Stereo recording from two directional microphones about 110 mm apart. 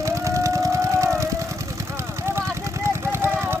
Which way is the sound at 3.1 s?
20° right (ahead or behind).